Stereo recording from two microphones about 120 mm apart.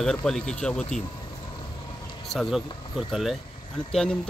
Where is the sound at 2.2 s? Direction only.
5° left (ahead or behind).